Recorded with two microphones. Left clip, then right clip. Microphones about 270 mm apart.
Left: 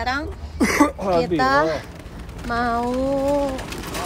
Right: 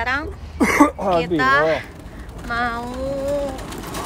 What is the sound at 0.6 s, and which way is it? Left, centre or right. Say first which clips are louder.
Speech: right 3 dB; right.